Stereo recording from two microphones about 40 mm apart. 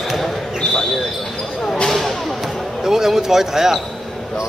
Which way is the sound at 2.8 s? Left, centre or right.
Centre.